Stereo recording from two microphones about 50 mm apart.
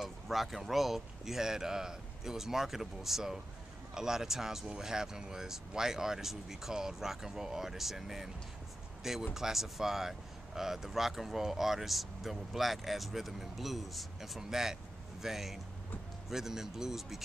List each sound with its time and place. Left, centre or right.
0.0 s speech: centre